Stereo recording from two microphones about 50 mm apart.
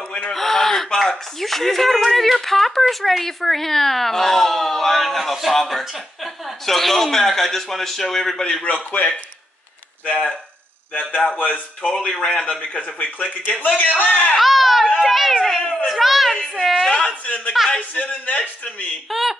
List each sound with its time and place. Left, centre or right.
0.3 s speech: centre
10.0 s speech: centre
10.9 s a man's voice: left
12.7 s speech: left
14.3 s a sound: centre
15.0 s a child's voice: centre
15.6 s a man's voice: centre
15.9 s speech: centre
17.7 s speech: left
19.0 s speech: centre